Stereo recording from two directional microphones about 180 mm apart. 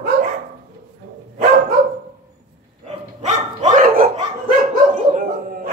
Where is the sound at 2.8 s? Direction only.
40° right (ahead or behind).